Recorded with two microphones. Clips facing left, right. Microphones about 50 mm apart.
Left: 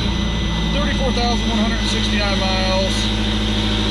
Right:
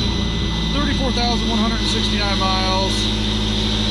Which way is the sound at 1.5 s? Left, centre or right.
Centre.